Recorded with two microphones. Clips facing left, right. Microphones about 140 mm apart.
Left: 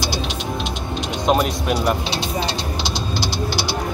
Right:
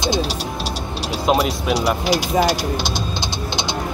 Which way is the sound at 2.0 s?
25° left (ahead or behind).